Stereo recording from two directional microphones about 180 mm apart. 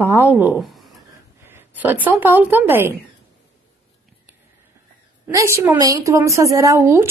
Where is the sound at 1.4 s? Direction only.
10° right (ahead or behind).